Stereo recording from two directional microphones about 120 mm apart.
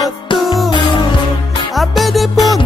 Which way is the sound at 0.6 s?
40° left (ahead or behind).